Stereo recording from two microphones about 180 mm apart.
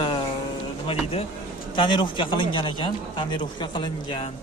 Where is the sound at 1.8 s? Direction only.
25° left (ahead or behind).